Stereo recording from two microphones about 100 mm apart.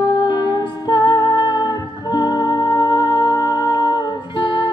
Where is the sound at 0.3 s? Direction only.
45° left (ahead or behind).